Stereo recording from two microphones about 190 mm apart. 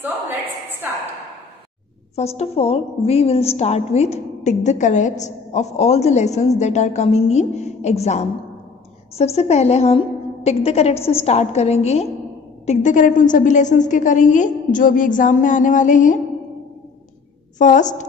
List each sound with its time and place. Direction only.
2.1 s a woman's voice: 35° left (ahead or behind)
17.6 s a woman's voice: 40° left (ahead or behind)